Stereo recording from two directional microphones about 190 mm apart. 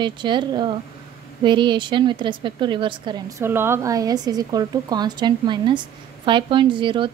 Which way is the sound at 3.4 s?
10° right (ahead or behind).